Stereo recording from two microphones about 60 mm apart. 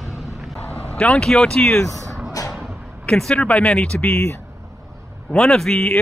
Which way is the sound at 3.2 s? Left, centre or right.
Centre.